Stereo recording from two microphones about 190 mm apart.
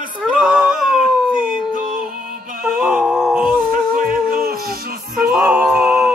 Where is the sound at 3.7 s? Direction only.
50° right (ahead or behind).